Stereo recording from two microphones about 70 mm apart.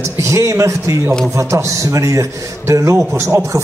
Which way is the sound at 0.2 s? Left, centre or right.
Right.